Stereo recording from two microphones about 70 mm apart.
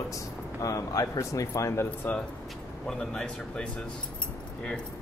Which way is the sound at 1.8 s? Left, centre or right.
Left.